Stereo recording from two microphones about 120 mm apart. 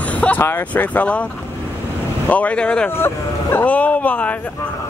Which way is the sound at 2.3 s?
10° left (ahead or behind).